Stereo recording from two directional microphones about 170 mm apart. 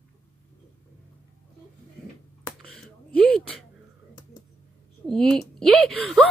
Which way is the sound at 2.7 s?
5° left (ahead or behind).